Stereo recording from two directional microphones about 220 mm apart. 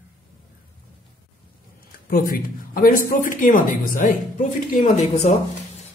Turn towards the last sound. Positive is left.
turn(degrees=30)  # may be behind; listen again after turning